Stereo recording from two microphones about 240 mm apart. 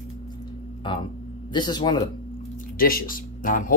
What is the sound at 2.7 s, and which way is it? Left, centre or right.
Speech, left.